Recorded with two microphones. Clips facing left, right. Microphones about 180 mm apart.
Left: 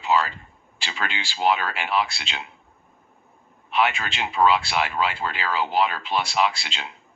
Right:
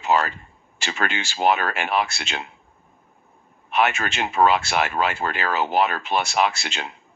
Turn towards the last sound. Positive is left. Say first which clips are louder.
# right 1 dB
turn(degrees=-50)  # may be behind; listen again after turning